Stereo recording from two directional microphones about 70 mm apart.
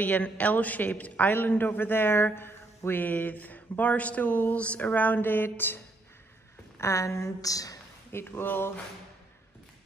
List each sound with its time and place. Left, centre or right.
0.0 s a man's voice: left
6.8 s a woman's voice: left
8.1 s speech: left